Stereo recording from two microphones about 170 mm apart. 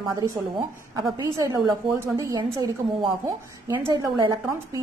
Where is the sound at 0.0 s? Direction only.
25° right (ahead or behind).